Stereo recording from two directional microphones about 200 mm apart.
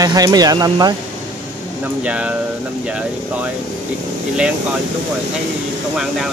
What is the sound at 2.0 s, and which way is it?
Speech, 5° right (ahead or behind).